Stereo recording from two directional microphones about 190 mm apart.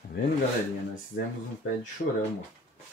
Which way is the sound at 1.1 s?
70° left (ahead or behind).